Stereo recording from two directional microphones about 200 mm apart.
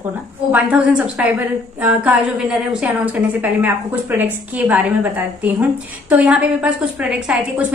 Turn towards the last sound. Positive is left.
turn(degrees=-5)  # may be behind; listen again after turning